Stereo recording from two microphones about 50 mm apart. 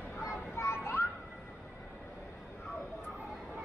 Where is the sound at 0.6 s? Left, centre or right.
Left.